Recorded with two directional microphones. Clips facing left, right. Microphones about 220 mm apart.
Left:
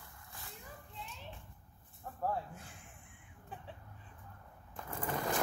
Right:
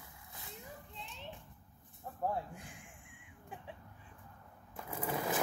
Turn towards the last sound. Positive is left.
turn(degrees=-5)  # may be behind; listen again after turning